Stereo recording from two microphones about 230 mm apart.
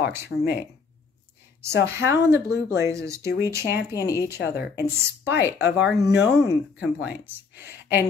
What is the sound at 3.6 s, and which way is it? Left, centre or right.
Speech, left.